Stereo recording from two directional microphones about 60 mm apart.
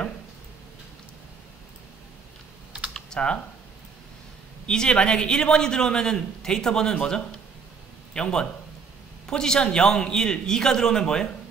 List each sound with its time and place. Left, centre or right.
2.9 s typing: centre
4.6 s a man's voice: centre